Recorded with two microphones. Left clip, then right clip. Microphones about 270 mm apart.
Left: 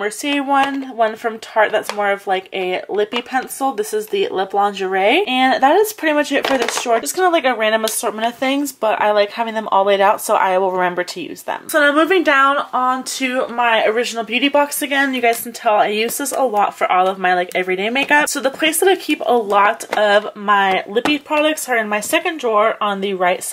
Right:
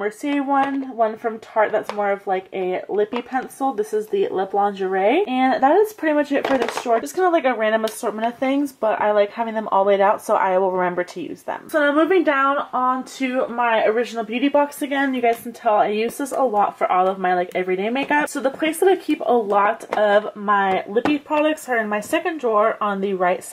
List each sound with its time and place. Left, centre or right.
0.0 s a woman's voice: centre